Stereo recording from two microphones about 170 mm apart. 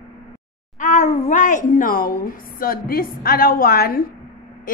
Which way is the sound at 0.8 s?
45° left (ahead or behind).